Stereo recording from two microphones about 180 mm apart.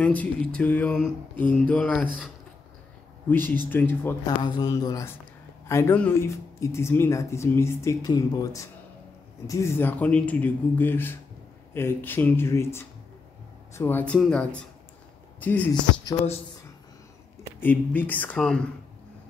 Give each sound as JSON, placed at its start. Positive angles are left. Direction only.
{"t": 0.0, "sound": "speech", "side_deg": 10}
{"t": 3.3, "sound": "speech", "side_deg": 10}
{"t": 4.4, "sound": "speech", "side_deg": 20}
{"t": 17.6, "sound": "speech", "side_deg": 10}